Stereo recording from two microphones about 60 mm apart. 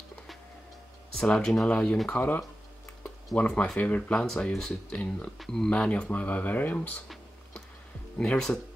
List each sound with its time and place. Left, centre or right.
1.1 s speech: centre
5.7 s speech: left
8.2 s speech: centre